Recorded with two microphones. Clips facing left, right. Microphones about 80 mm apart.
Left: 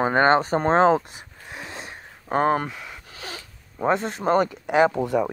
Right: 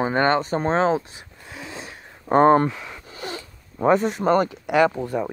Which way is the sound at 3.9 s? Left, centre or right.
Left.